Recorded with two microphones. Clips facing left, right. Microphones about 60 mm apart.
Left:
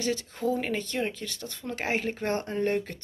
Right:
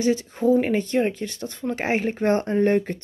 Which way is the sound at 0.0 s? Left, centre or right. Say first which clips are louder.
Right 8 dB; centre.